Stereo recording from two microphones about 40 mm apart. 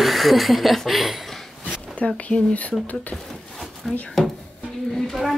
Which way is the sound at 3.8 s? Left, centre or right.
Centre.